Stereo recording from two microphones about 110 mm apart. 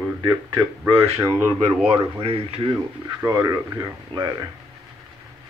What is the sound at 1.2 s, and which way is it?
Speech, 25° right (ahead or behind).